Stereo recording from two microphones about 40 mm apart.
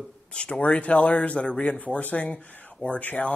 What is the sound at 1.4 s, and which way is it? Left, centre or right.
Speech, left.